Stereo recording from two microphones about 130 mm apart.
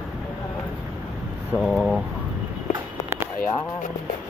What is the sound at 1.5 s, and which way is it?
Speech, centre (ahead or behind).